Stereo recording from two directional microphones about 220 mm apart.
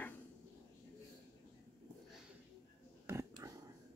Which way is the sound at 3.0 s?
15° right (ahead or behind).